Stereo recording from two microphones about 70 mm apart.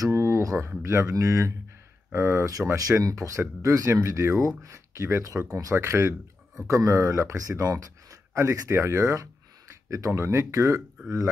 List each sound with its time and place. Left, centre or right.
0.0 s a sound: right
0.7 s speech: right
1.1 s speech: right
2.1 s speech: right
5.8 s speech: right
6.7 s speech: right